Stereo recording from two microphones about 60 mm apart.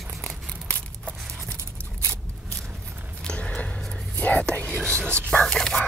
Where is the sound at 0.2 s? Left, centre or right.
Centre.